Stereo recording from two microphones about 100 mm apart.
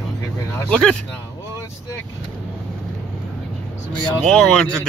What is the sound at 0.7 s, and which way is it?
Speech, 5° left (ahead or behind).